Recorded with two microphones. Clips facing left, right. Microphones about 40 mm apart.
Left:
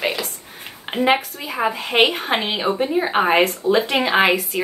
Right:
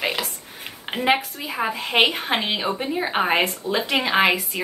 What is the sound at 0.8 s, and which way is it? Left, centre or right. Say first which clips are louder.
A woman's voice: left 3 dB; centre.